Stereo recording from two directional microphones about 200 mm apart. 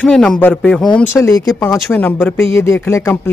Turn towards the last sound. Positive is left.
turn(degrees=10)  # may be behind; listen again after turning